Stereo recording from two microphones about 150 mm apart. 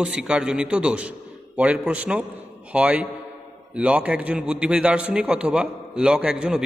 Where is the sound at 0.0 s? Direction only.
5° right (ahead or behind).